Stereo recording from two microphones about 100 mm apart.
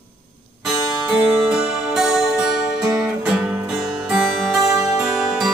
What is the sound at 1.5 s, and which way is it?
Guitar, 5° right (ahead or behind).